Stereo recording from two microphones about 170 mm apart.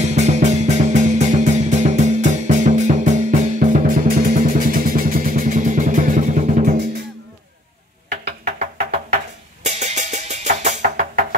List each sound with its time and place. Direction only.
0.0 s music: 40° right (ahead or behind)
8.3 s music: 40° right (ahead or behind)